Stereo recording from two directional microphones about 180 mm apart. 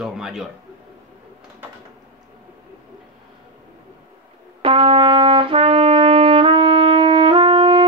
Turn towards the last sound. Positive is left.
turn(degrees=-30)  # may be behind; listen again after turning